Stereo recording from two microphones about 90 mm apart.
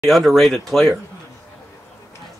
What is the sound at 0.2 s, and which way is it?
Speech, 5° right (ahead or behind).